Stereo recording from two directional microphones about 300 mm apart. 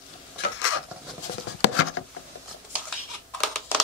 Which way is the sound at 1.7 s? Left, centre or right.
Left.